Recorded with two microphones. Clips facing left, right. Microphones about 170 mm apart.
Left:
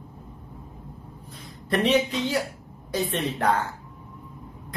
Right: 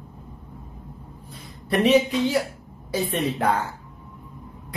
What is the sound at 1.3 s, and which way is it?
A woman's voice, 10° right (ahead or behind).